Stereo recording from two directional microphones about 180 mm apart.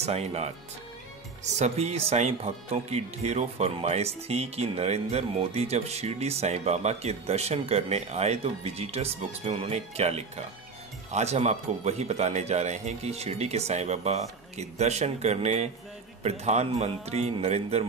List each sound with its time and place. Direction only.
0.0 s speech: 35° right (ahead or behind)
1.6 s speech: 35° right (ahead or behind)